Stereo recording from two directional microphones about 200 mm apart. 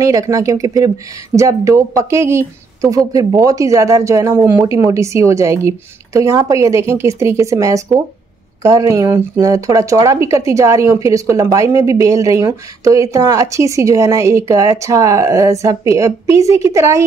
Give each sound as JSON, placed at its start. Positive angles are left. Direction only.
{"t": 0.0, "sound": "speech", "side_deg": -15}